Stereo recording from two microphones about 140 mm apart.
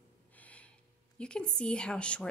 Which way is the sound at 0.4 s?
10° left (ahead or behind).